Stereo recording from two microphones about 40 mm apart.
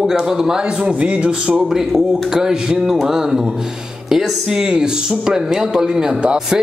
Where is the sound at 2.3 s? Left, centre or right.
Centre.